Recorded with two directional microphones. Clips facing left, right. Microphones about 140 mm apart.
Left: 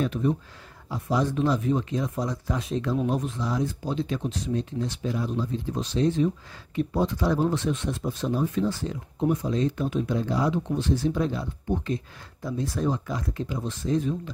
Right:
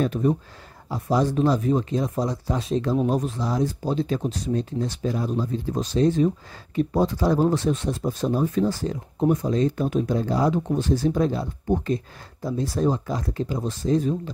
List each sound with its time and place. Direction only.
0.0 s speech: 40° right (ahead or behind)